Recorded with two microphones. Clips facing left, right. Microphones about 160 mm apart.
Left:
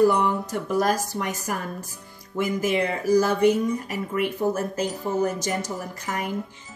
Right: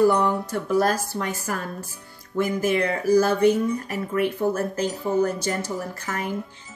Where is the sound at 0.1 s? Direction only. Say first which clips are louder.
Right 1 dB; 15° left (ahead or behind).